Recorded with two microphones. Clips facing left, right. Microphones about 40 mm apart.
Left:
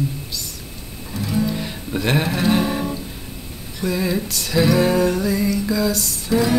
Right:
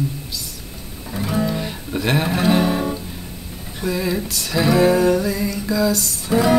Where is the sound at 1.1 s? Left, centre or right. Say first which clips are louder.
Right 1 dB; right.